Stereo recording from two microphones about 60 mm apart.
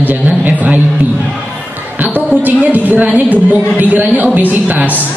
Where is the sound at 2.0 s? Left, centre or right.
Right.